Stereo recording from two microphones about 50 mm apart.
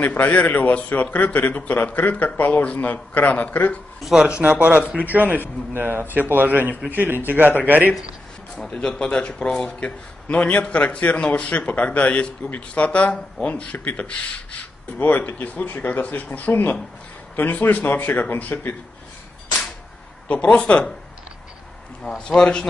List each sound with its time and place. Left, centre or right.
0.0 s speech: left
4.0 s a man's voice: centre
4.4 s a man's voice: right
5.7 s a man's voice: right
8.7 s a man's voice: centre; by 18.8 s left
20.2 s a man's voice: left
22.3 s a man's voice: centre